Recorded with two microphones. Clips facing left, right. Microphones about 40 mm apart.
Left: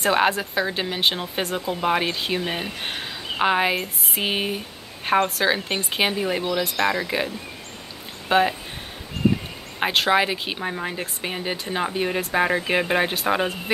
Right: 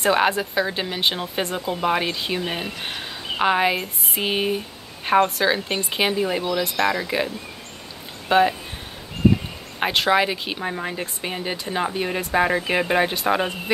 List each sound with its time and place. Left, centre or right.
0.0 s speech: centre
8.3 s speech: centre
9.8 s speech: centre